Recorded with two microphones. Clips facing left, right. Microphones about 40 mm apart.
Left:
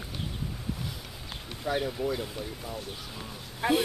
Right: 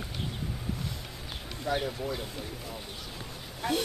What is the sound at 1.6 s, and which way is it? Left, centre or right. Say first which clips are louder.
Speech: left 2 dB; centre.